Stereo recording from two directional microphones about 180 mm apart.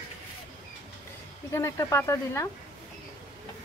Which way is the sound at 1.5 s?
15° left (ahead or behind).